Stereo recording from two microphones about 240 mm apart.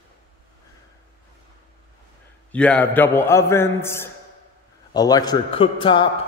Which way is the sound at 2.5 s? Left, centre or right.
Centre.